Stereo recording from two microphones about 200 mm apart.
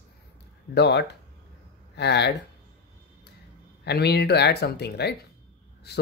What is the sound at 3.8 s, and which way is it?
Speech, 55° left (ahead or behind).